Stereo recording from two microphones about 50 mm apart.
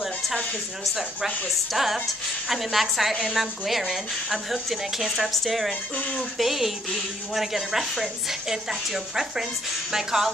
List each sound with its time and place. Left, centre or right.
0.8 s a woman's voice: centre